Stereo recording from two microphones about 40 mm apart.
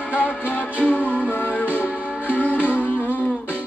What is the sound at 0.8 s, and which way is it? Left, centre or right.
Music, left.